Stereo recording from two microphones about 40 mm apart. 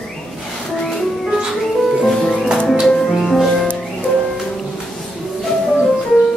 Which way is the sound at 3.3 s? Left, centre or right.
Centre.